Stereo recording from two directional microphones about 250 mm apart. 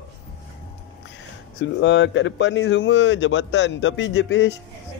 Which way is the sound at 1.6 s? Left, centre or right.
Left.